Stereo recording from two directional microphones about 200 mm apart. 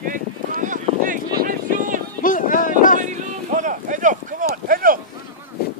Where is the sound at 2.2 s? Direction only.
40° left (ahead or behind).